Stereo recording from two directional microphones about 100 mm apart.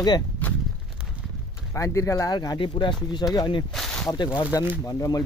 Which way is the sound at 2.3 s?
45° left (ahead or behind).